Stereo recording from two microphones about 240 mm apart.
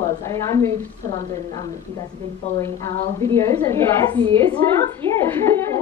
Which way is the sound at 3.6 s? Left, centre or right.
Centre.